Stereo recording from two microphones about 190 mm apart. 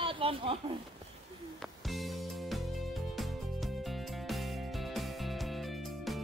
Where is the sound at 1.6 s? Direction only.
Centre (ahead or behind).